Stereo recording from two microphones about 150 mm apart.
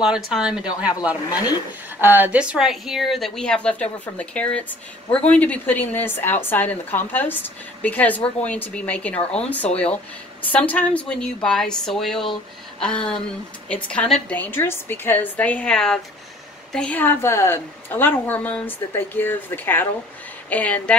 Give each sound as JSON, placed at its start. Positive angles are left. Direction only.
{"t": 0.0, "sound": "a woman's voice", "side_deg": -5}